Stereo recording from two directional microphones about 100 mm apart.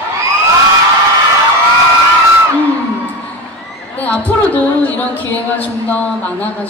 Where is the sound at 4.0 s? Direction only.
15° left (ahead or behind).